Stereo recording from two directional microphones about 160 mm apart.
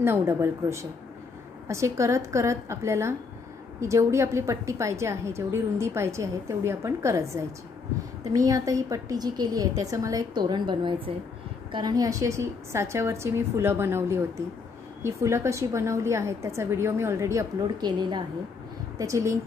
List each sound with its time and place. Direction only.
0.0 s a woman's voice: 15° right (ahead or behind)